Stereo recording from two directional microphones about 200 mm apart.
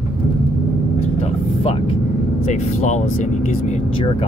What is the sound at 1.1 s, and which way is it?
Vehicle, 30° left (ahead or behind).